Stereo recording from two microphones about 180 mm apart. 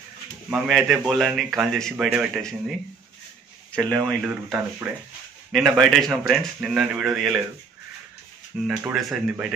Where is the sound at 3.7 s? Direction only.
5° left (ahead or behind).